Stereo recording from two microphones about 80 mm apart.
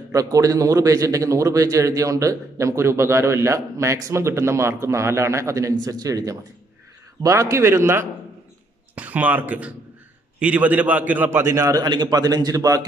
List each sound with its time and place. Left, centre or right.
0.1 s a man's voice: right
8.9 s a man's voice: centre
11.2 s a man's voice: right
11.8 s a man's voice: right